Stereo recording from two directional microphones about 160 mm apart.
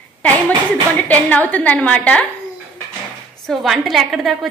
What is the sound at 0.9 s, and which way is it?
A woman's voice, 10° left (ahead or behind).